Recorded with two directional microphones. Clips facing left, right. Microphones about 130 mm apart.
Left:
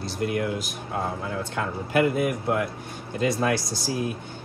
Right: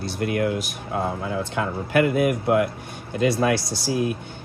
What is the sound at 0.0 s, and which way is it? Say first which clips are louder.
Speech: right 3 dB; 70° right (ahead or behind).